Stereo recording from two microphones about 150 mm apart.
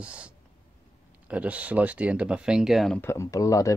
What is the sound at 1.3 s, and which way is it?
Speech, 10° right (ahead or behind).